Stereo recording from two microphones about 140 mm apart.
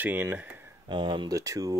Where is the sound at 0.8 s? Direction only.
35° right (ahead or behind).